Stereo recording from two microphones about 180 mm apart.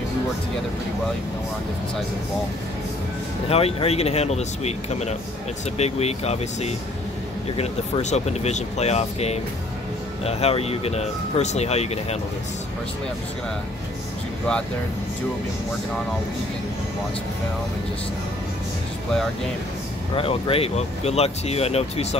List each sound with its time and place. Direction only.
3.4 s speech: 35° left (ahead or behind)
20.2 s speech: 30° left (ahead or behind)